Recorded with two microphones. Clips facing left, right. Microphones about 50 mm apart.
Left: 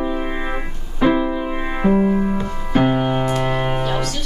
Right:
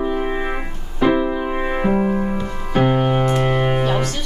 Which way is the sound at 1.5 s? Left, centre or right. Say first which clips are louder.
Even; centre.